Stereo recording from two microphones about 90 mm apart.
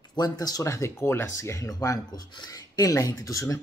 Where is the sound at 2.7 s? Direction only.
35° left (ahead or behind).